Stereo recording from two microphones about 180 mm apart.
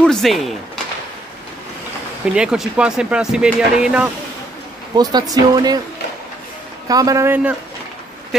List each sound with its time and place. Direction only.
0.0 s speech: centre (ahead or behind)
2.2 s speech: 5° right (ahead or behind)
4.9 s speech: 20° right (ahead or behind)
6.9 s a man's voice: 20° right (ahead or behind)